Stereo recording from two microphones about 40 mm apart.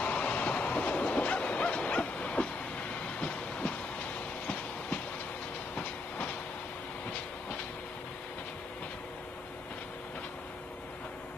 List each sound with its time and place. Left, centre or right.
0.0 s train: left